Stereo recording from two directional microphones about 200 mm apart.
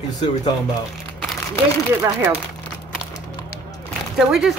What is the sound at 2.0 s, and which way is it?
Speech, 10° right (ahead or behind).